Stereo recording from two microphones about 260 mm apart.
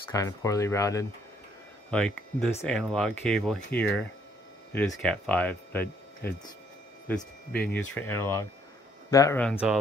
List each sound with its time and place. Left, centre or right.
0.1 s speech: centre
7.7 s speech: left
8.1 s speech: centre